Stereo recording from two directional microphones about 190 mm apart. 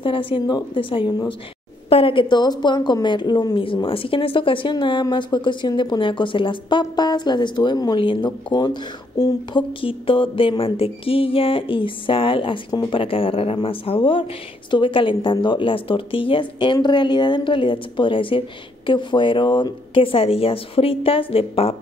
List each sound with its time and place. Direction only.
0.0 s a woman's voice: 30° left (ahead or behind)